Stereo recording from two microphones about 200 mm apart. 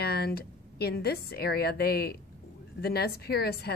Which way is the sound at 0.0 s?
50° left (ahead or behind).